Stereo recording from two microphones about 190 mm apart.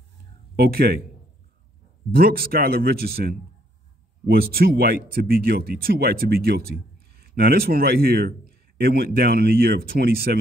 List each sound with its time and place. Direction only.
0.6 s speech: 55° right (ahead or behind)
2.1 s a man's voice: 50° right (ahead or behind)